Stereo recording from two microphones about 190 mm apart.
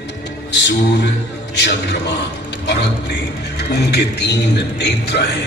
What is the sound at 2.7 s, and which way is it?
A man's voice, 65° left (ahead or behind).